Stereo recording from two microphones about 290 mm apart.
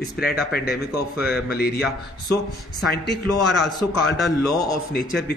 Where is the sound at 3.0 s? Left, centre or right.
Left.